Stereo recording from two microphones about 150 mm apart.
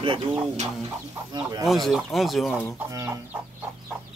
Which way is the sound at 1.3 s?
25° right (ahead or behind).